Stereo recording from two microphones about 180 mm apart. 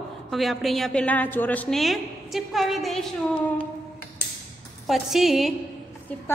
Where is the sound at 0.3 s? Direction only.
Centre (ahead or behind).